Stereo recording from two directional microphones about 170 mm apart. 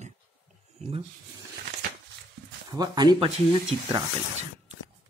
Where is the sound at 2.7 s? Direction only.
25° right (ahead or behind).